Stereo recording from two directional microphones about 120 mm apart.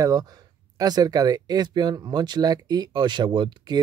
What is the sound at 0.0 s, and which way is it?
Speech, 30° right (ahead or behind).